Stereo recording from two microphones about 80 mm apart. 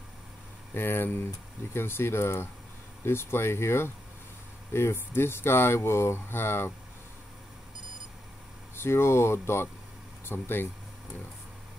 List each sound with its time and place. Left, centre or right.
0.7 s speech: left
8.7 s speech: left